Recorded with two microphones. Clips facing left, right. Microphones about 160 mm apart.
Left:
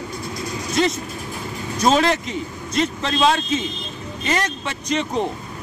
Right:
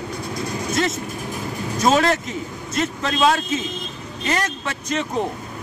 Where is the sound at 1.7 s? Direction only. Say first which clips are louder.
Even; centre (ahead or behind).